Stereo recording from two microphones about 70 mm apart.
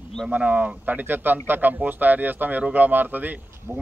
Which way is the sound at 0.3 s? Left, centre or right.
Right.